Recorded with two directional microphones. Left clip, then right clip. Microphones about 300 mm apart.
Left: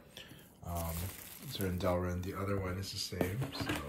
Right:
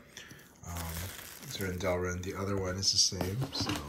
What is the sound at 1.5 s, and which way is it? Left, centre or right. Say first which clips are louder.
Speech: right 2 dB; centre.